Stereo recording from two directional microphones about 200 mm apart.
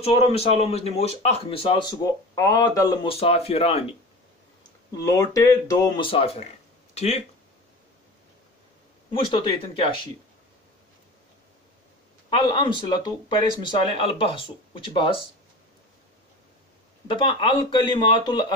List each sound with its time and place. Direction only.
0.0 s speech: 30° left (ahead or behind)
4.9 s speech: 15° left (ahead or behind); by 7.2 s 30° left (ahead or behind)
9.3 s speech: 25° left (ahead or behind)
12.4 s speech: 20° left (ahead or behind)
17.1 s speech: 25° left (ahead or behind)